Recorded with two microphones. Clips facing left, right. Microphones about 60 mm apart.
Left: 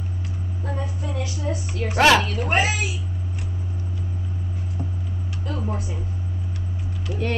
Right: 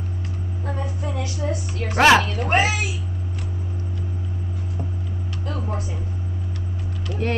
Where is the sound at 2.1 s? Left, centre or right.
Right.